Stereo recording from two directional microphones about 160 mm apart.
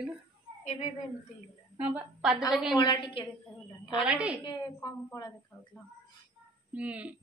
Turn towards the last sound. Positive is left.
turn(degrees=-10)  # may be behind; listen again after turning